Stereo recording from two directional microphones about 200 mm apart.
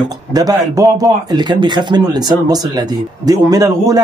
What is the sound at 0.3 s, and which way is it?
A man's voice, 20° right (ahead or behind).